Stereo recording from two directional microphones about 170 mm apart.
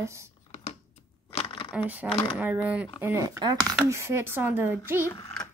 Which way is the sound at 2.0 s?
30° left (ahead or behind).